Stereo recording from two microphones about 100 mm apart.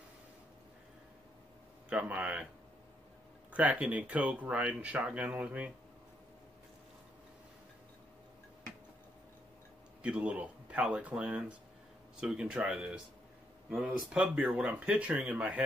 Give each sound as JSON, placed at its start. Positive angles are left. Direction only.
{"t": 1.9, "sound": "speech", "side_deg": -10}
{"t": 3.5, "sound": "speech", "side_deg": -15}
{"t": 10.0, "sound": "speech", "side_deg": -10}